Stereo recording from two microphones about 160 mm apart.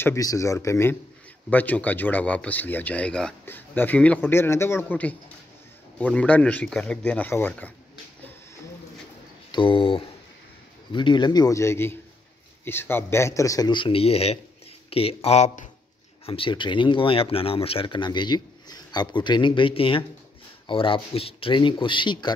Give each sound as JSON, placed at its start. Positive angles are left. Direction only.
{"t": 0.0, "sound": "speech", "side_deg": 20}
{"t": 9.5, "sound": "speech", "side_deg": 30}
{"t": 16.3, "sound": "speech", "side_deg": 35}